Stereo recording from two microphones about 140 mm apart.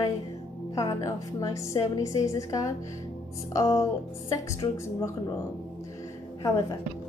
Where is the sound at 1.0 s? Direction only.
25° left (ahead or behind).